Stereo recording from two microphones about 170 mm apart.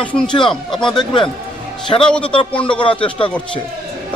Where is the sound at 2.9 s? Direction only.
30° left (ahead or behind).